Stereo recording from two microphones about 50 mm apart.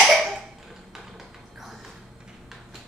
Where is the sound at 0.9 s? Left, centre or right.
Centre.